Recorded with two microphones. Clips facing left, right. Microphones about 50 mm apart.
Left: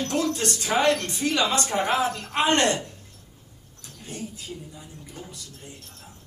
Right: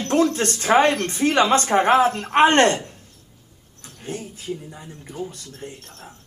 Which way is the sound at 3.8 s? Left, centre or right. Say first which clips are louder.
Right 8 dB; right.